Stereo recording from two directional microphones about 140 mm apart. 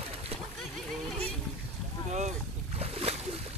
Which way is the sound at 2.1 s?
55° right (ahead or behind).